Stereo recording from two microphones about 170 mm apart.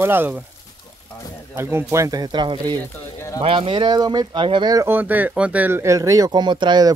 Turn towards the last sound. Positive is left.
turn(degrees=-25)  # may be behind; listen again after turning